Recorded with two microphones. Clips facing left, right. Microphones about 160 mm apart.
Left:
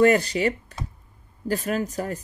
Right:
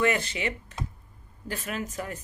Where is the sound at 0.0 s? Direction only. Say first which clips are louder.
Left 8 dB; 40° left (ahead or behind).